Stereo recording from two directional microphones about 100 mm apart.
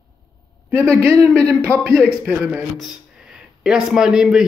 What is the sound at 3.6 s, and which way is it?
Speech, 5° right (ahead or behind).